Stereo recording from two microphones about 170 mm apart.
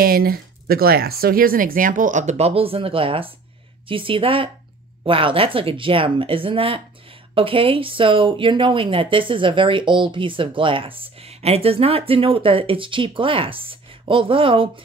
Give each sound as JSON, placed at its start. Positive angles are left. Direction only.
{"t": 0.0, "sound": "speech", "side_deg": -60}